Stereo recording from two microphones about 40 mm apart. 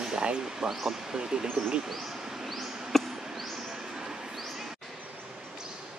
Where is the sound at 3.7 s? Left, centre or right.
Centre.